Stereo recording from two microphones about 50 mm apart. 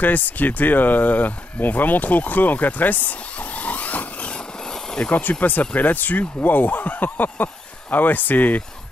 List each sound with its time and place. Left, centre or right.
0.0 s speech: left